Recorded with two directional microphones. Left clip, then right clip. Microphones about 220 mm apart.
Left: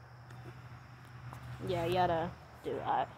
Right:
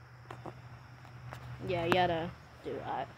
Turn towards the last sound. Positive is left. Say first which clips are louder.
# left 4 dB
turn(degrees=0)  # may be behind; listen again after turning